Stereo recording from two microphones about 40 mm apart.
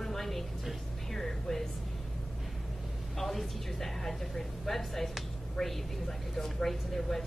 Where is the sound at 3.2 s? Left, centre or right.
Centre.